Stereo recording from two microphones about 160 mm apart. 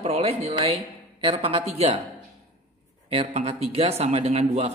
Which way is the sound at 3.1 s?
40° right (ahead or behind).